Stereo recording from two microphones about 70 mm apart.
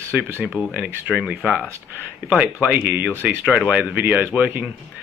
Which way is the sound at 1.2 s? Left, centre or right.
Centre.